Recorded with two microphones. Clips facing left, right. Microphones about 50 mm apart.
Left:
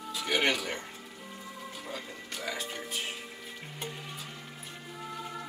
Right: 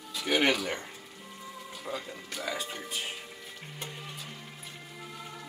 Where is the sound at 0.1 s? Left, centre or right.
Centre.